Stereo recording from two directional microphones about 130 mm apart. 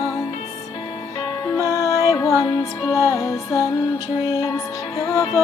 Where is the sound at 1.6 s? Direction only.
25° left (ahead or behind).